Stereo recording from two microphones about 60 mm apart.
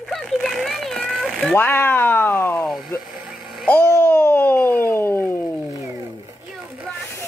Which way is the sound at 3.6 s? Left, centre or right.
Left.